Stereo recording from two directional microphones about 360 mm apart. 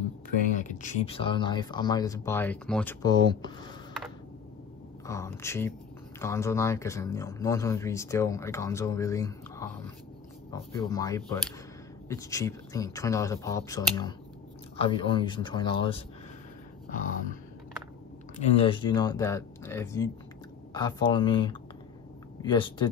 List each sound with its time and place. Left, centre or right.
0.5 s speech: left
5.0 s speech: centre
16.9 s a sound: left
18.6 s speech: centre